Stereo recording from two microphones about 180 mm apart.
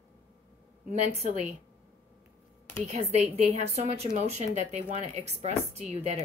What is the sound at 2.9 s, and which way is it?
A woman's voice, 40° right (ahead or behind).